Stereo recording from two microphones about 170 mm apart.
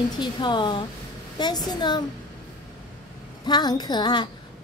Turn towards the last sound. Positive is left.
turn(degrees=25)  # may be behind; listen again after turning